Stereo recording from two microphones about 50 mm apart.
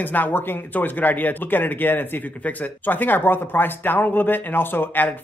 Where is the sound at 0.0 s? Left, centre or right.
Left.